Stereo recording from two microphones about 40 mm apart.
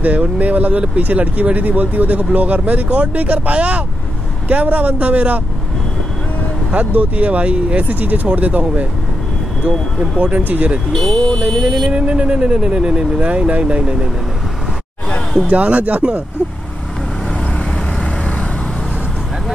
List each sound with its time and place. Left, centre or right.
0.0 s speech: right
6.7 s speech: right
10.3 s speech: right
10.9 s speech: centre
11.9 s speech: right
15.5 s speech: right